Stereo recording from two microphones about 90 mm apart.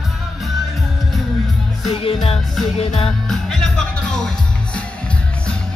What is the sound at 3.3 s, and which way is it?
Music, 5° left (ahead or behind).